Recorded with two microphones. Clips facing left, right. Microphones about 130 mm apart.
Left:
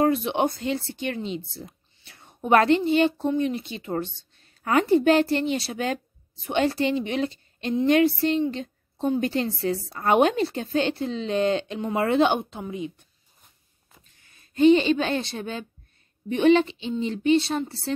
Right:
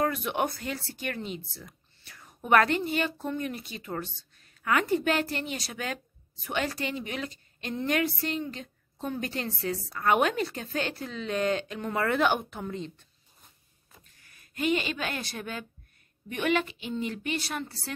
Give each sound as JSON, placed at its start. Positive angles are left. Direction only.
{"t": 0.0, "sound": "a woman's voice", "side_deg": 25}
{"t": 14.1, "sound": "a woman's voice", "side_deg": 25}